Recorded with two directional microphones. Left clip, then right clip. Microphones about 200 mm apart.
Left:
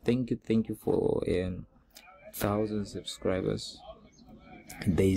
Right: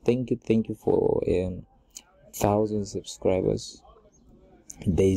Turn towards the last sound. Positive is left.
turn(degrees=0)  # may be behind; listen again after turning